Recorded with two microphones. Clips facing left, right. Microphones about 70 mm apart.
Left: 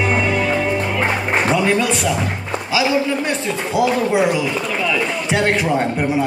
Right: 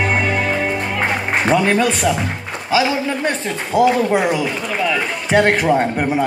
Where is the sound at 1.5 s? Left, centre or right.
Right.